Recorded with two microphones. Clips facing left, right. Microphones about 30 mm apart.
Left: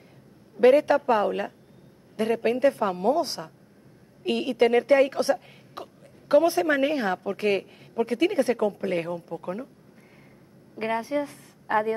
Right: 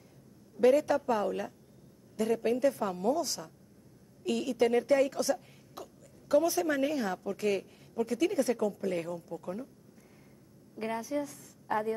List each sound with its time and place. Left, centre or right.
0.6 s speech: left
10.8 s a woman's voice: left